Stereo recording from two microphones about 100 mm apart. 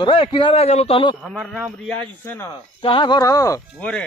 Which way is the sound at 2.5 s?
60° left (ahead or behind).